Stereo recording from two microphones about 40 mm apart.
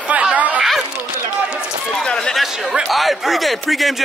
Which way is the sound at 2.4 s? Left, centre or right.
Centre.